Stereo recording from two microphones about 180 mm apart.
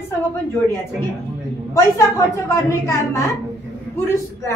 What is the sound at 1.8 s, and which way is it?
A woman's voice, 15° left (ahead or behind).